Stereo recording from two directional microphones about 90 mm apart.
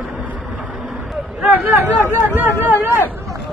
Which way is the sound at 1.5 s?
20° right (ahead or behind).